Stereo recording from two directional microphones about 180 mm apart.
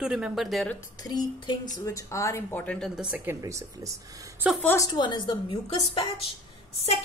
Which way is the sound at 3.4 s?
15° right (ahead or behind).